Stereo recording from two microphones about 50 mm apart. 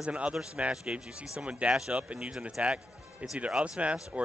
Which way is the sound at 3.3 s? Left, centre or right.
Right.